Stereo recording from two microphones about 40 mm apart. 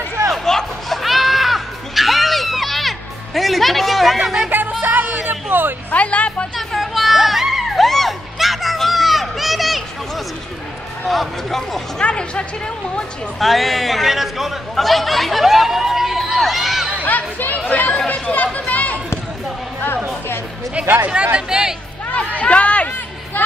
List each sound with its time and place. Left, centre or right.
0.3 s music: centre
4.5 s music: right
5.9 s music: left
6.5 s music: centre
11.1 s a sound: centre
12.0 s music: left
13.4 s speech: centre
17.0 s chatter: left
17.9 s chatter: left
18.3 s chatter: left
21.1 s speech: right
21.5 s a sound: centre
22.4 s chatter: left